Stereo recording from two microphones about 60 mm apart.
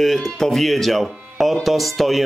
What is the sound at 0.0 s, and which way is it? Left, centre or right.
Speech, centre.